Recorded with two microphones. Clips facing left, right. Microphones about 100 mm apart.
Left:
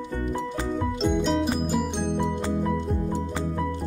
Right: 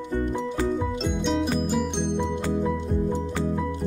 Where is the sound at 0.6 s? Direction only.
5° right (ahead or behind).